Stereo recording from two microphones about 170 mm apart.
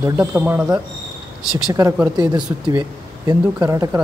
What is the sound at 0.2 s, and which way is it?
Speech, 10° right (ahead or behind).